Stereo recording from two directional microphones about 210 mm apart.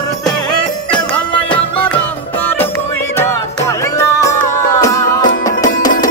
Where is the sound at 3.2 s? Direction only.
10° left (ahead or behind).